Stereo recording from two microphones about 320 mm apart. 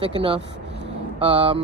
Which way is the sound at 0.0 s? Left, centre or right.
Centre.